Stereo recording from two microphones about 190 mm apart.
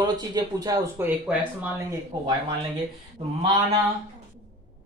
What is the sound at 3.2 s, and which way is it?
Speech, 30° right (ahead or behind).